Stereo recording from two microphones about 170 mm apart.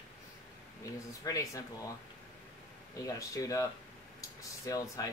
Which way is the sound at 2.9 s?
20° left (ahead or behind).